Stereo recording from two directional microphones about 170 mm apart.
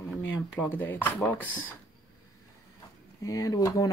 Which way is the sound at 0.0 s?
10° left (ahead or behind).